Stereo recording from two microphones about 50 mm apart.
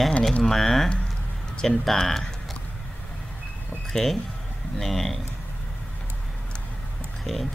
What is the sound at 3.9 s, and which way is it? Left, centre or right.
Speech, centre.